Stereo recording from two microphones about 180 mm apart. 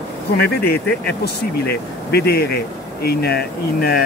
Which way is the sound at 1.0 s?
65° left (ahead or behind).